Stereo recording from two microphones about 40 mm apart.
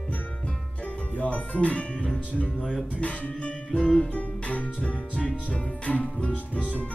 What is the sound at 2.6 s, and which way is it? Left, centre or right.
Speech, centre.